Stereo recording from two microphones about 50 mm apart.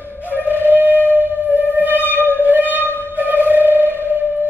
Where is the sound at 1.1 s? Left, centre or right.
Right.